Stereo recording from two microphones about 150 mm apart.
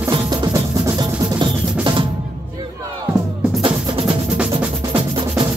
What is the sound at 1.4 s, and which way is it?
Drum, 35° right (ahead or behind).